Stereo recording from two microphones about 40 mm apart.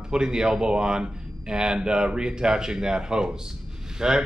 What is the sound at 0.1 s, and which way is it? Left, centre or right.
A man's voice, centre.